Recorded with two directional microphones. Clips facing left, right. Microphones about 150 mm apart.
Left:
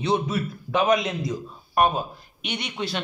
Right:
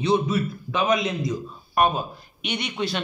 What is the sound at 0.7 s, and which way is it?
Speech, 45° left (ahead or behind).